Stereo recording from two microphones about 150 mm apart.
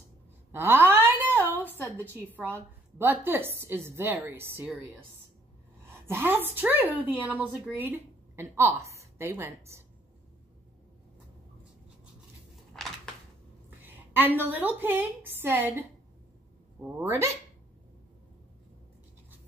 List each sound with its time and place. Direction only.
0.5 s a sound: 15° right (ahead or behind)
2.2 s a woman's voice: 15° right (ahead or behind)
6.0 s a woman's voice: 15° right (ahead or behind)
12.7 s a sound: 5° left (ahead or behind)
13.8 s a woman's voice: 10° right (ahead or behind)
16.8 s a woman's voice: 15° right (ahead or behind)